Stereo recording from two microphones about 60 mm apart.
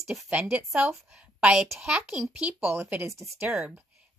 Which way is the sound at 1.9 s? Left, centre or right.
Centre.